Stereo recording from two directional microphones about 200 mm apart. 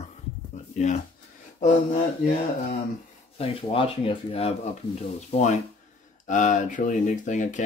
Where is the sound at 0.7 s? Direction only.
35° left (ahead or behind).